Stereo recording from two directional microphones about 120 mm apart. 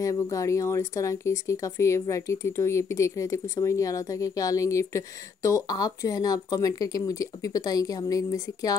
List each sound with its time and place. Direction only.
0.0 s speech: 30° left (ahead or behind)